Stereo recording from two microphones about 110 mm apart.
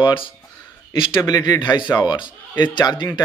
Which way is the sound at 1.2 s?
35° left (ahead or behind).